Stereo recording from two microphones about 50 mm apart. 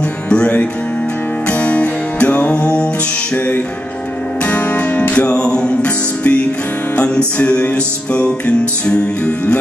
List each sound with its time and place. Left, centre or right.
0.3 s music: left